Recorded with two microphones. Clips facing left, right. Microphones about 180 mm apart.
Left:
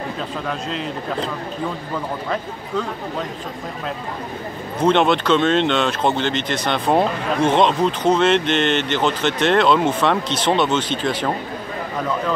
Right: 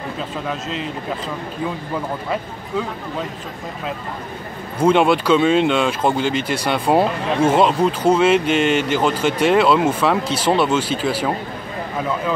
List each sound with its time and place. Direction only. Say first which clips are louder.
0.5 s a man's voice: even; centre (ahead or behind)
2.3 s speech: even; 5° right (ahead or behind)
4.7 s speech: right 2 dB; 10° right (ahead or behind)